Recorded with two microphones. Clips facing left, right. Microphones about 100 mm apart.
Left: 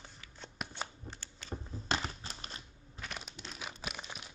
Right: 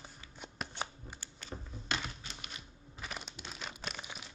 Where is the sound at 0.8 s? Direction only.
10° right (ahead or behind).